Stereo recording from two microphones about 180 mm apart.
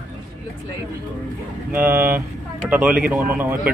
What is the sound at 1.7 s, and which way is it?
Speech, 10° right (ahead or behind).